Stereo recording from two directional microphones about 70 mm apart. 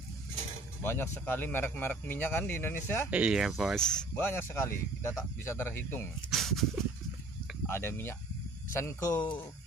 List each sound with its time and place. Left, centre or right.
0.8 s speech: left
3.1 s speech: centre
3.3 s speech: centre
3.7 s speech: centre
4.1 s speech: left
6.3 s a sound: centre
7.6 s speech: left
9.1 s speech: left